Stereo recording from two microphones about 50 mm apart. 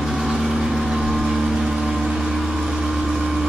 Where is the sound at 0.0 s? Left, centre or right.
Centre.